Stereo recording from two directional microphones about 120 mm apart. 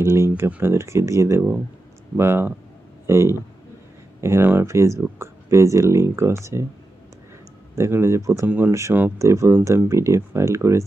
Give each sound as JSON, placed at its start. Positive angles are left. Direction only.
{"t": 0.0, "sound": "speech", "side_deg": -20}
{"t": 7.7, "sound": "speech", "side_deg": -20}
{"t": 8.5, "sound": "speech", "side_deg": -15}